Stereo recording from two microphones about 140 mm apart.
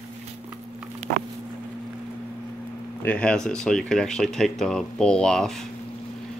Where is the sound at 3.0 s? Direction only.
10° left (ahead or behind).